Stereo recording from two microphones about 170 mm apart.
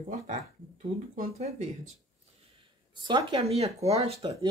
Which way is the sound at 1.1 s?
40° right (ahead or behind).